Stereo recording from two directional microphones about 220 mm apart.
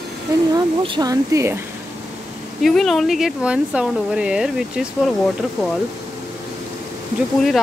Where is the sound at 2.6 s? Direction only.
Centre (ahead or behind).